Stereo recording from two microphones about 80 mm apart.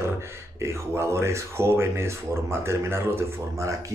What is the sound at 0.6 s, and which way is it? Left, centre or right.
Speech, right.